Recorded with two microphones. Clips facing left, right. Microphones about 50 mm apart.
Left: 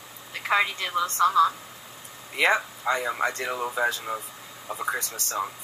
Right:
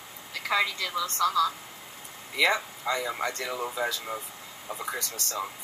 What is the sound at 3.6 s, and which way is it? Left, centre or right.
Speech, centre.